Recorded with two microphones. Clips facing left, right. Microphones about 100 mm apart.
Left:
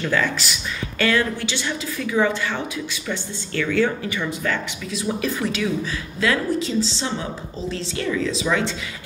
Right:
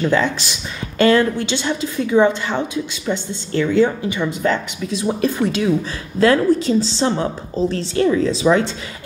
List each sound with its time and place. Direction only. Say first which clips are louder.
0.0 s a woman's voice: right 5 dB; 25° right (ahead or behind)
4.4 s a woman's voice: right 6 dB; 30° right (ahead or behind)
5.2 s speech: right 7 dB; 45° right (ahead or behind)